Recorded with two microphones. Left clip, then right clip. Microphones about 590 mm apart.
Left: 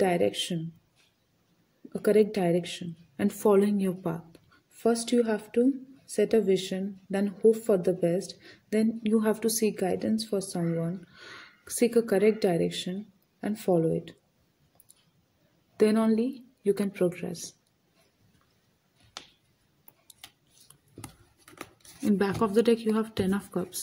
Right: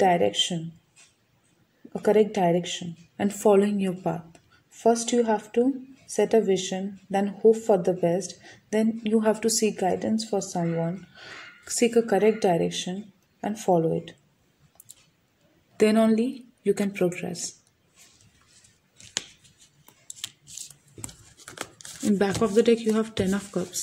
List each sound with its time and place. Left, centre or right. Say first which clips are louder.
0.0 s speech: right 5 dB; left
1.9 s speech: right 2 dB; left
11.8 s speech: right 2 dB; left
15.8 s speech: right 3 dB; left
22.2 s speech: right 4 dB; left